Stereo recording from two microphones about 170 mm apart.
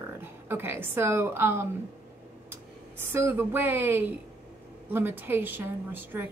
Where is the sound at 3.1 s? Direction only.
15° right (ahead or behind).